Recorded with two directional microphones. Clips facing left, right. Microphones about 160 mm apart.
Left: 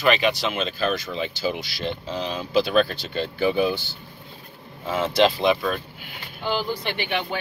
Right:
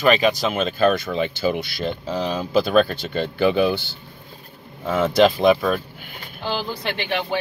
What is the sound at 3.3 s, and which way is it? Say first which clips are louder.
Speech: right 3 dB; 70° right (ahead or behind).